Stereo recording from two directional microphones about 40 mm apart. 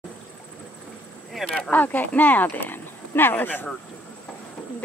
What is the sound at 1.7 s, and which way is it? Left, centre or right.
Speech, left.